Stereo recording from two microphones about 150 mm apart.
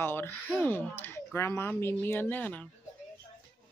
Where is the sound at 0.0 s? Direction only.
15° left (ahead or behind).